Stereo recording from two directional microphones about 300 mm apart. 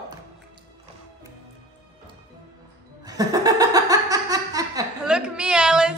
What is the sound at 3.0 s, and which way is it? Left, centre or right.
Laughter, centre.